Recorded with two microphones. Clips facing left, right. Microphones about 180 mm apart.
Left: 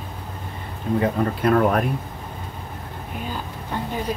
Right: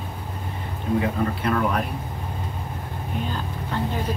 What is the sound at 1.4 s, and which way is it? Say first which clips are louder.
Speech: left 7 dB; 45° left (ahead or behind).